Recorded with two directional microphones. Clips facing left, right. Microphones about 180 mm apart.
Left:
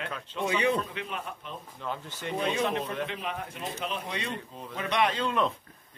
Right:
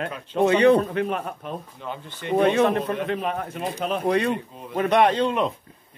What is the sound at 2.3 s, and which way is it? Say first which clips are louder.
Speech: right 10 dB; 60° right (ahead or behind).